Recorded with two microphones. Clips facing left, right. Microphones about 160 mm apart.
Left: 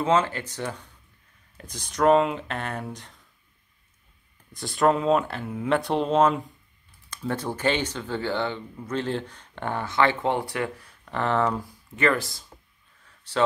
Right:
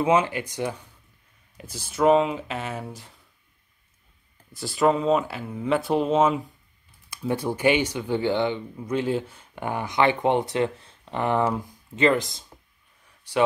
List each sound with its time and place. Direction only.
0.0 s speech: 15° right (ahead or behind)
4.5 s speech: centre (ahead or behind); by 12.4 s 20° right (ahead or behind)
13.0 s a sound: 15° right (ahead or behind)